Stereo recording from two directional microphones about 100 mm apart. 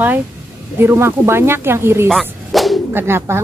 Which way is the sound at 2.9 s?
25° right (ahead or behind).